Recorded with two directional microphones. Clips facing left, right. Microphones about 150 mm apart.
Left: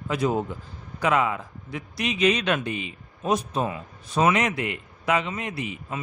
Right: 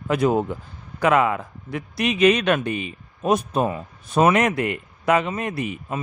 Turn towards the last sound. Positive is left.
turn(degrees=-50)  # may be behind; listen again after turning